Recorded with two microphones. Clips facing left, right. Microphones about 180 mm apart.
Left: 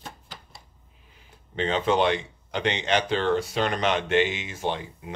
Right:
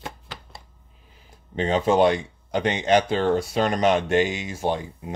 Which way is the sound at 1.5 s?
40° right (ahead or behind).